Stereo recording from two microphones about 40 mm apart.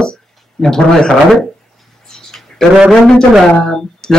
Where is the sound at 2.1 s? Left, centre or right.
Centre.